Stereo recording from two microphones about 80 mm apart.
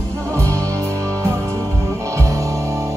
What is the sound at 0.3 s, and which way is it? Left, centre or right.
Music, right.